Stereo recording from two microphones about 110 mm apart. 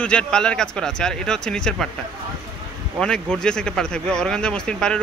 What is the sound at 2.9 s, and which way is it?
Speech, 5° left (ahead or behind).